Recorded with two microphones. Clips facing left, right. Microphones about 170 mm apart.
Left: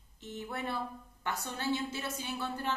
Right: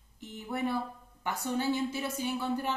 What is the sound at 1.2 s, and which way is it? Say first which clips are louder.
A woman's voice: right 4 dB; 10° right (ahead or behind).